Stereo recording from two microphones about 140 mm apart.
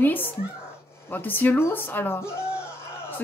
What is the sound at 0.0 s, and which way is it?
A woman's voice, 15° left (ahead or behind).